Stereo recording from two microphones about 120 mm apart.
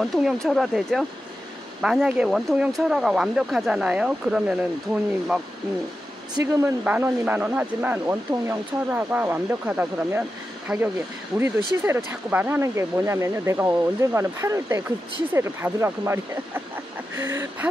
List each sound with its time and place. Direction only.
0.0 s speech: centre (ahead or behind)
6.4 s speech: 20° right (ahead or behind); by 10.8 s 5° right (ahead or behind)
11.3 s speech: 20° right (ahead or behind)